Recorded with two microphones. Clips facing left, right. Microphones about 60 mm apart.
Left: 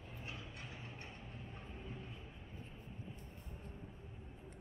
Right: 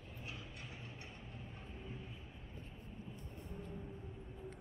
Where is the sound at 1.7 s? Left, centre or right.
Centre.